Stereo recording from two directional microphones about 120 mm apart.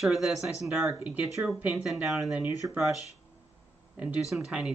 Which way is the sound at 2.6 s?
15° right (ahead or behind).